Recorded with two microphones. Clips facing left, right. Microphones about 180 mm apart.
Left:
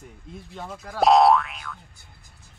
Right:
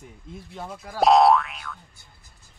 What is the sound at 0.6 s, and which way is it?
Speech, centre (ahead or behind).